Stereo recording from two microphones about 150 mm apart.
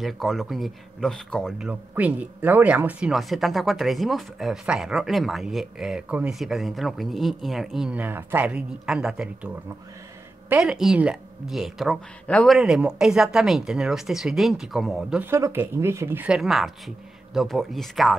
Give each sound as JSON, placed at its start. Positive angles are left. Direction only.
{"t": 0.0, "sound": "speech", "side_deg": 0}
{"t": 1.7, "sound": "speech", "side_deg": -10}
{"t": 10.5, "sound": "speech", "side_deg": -5}
{"t": 12.3, "sound": "speech", "side_deg": 10}
{"t": 12.5, "sound": "speech", "side_deg": -5}
{"t": 15.2, "sound": "speech", "side_deg": -15}
{"t": 16.3, "sound": "speech", "side_deg": 0}